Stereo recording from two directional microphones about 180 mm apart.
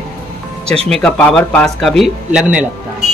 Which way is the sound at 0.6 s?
35° right (ahead or behind).